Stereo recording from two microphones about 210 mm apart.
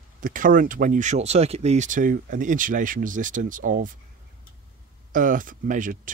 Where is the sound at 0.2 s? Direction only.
40° right (ahead or behind).